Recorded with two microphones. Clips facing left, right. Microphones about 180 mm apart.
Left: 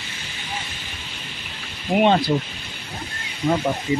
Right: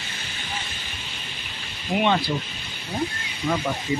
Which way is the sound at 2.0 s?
40° left (ahead or behind).